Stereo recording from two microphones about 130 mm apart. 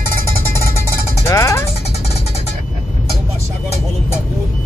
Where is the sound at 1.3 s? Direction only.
20° left (ahead or behind).